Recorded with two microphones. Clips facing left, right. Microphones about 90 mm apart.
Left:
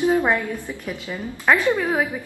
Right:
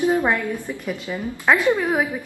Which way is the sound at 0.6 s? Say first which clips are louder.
Right 2 dB; 15° right (ahead or behind).